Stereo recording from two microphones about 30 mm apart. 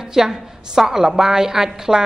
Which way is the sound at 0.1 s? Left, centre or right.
Centre.